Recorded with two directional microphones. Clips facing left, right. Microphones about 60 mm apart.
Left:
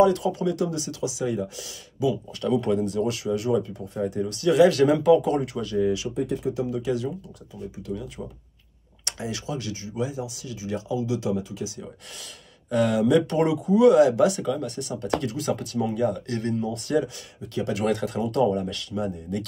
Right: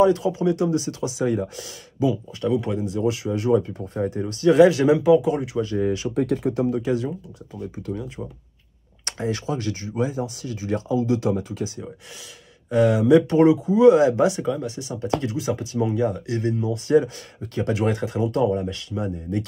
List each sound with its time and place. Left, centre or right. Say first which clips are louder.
0.0 s speech: right 2 dB; right
2.4 s speech: even; centre; by 4.6 s right
4.8 s speech: right 2 dB; centre
5.8 s speech: left 3 dB; right
6.1 s speech: right 4 dB; right
12.6 s speech: right 3 dB; right
16.8 s speech: right 10 dB; right
17.8 s speech: right 1 dB; right